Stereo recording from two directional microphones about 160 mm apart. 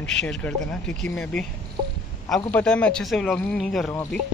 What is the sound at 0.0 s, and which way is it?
A man's voice, 5° left (ahead or behind).